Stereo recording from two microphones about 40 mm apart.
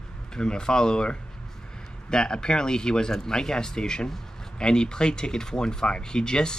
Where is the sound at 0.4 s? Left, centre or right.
Centre.